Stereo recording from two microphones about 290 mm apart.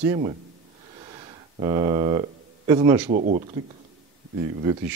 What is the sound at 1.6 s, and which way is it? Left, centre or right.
Speech, centre.